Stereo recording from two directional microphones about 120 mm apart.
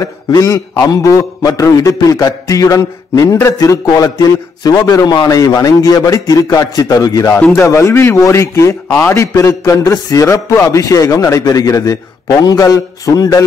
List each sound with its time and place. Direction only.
0.0 s a man's voice: 30° left (ahead or behind)
7.3 s a man's voice: 15° left (ahead or behind)
7.6 s a man's voice: 25° left (ahead or behind)